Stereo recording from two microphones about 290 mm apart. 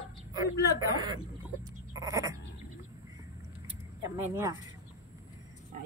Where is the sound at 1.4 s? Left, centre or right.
Centre.